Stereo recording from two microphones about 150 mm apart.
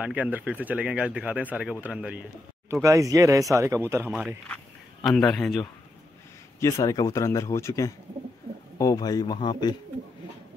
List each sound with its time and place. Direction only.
0.0 s speech: 10° right (ahead or behind)
2.7 s speech: 20° right (ahead or behind)
5.0 s a man's voice: 5° left (ahead or behind)
6.6 s speech: 20° left (ahead or behind)